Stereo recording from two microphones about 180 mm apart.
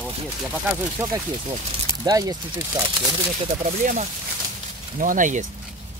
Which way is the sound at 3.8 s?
45° right (ahead or behind).